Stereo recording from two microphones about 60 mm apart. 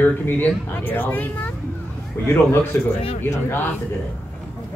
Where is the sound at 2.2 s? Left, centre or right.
Left.